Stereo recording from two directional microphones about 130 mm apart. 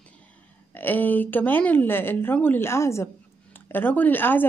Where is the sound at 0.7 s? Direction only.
15° left (ahead or behind).